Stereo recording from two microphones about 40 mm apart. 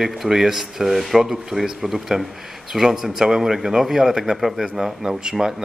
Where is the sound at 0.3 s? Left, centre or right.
Centre.